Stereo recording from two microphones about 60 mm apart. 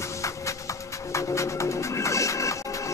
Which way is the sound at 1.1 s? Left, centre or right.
Left.